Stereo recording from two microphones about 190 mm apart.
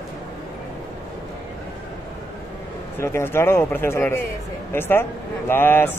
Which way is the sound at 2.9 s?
15° left (ahead or behind).